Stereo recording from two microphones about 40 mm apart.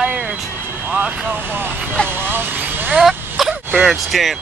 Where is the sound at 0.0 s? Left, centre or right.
Centre.